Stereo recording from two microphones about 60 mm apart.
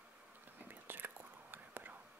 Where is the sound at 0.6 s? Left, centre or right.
Right.